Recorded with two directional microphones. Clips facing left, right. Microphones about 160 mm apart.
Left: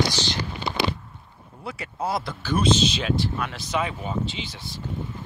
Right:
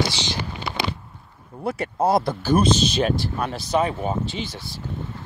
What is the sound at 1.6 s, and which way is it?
Speech, 50° right (ahead or behind).